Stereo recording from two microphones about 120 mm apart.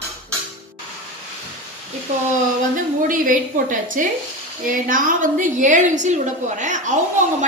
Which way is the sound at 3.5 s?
90° right.